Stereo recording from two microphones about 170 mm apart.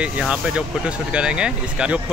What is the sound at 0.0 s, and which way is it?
Speech, 5° right (ahead or behind).